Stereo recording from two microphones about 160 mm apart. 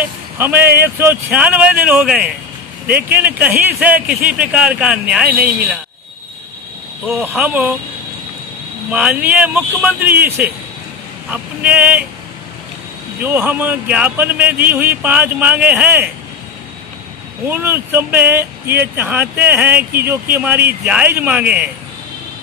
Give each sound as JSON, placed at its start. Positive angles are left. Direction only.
{"t": 0.4, "sound": "speech", "side_deg": -10}
{"t": 7.1, "sound": "speech", "side_deg": -5}
{"t": 8.9, "sound": "speech", "side_deg": -10}
{"t": 13.2, "sound": "speech", "side_deg": -10}
{"t": 17.5, "sound": "speech", "side_deg": -15}
{"t": 19.8, "sound": "speech", "side_deg": -75}
{"t": 20.3, "sound": "speech", "side_deg": -10}